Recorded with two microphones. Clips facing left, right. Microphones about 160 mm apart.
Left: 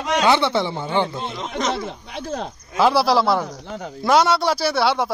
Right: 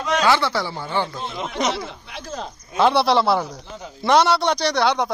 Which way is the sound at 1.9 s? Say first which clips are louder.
Left 5 dB; 55° left (ahead or behind).